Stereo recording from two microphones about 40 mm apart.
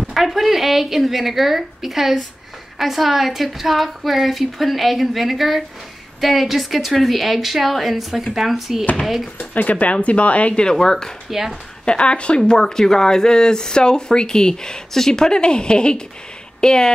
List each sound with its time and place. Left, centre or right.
0.1 s a woman's voice: centre
9.4 s speech: left
10.6 s speech: centre
11.2 s speech: centre
11.8 s speech: left
12.4 s speech: centre